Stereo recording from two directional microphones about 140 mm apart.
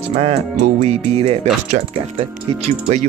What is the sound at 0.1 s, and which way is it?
Music, 50° right (ahead or behind).